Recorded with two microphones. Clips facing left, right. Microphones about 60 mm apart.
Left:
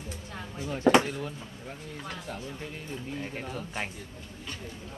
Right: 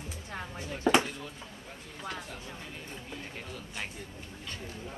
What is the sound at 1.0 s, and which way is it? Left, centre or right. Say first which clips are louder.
Speech: left 6 dB; left.